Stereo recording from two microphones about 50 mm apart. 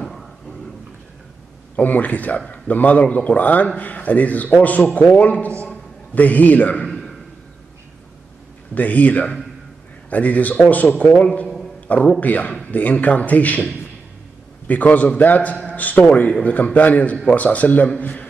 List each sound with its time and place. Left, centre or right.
0.0 s a sound: centre
1.8 s a man's voice: left
6.9 s a sound: centre
8.7 s a man's voice: left
11.1 s a man's voice: centre
12.2 s a man's voice: left
14.7 s a man's voice: left